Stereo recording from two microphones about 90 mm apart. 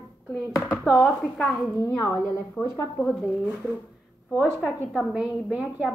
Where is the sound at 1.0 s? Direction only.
5° left (ahead or behind).